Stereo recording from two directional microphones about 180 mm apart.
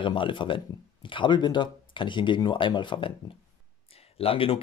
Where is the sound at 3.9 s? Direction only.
35° left (ahead or behind).